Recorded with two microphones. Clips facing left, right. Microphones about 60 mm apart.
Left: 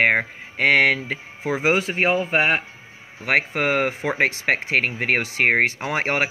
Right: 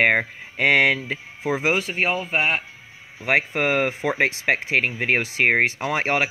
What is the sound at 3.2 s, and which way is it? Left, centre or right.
Speech, left.